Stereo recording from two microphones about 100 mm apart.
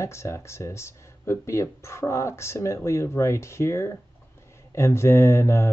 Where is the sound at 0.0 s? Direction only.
30° left (ahead or behind).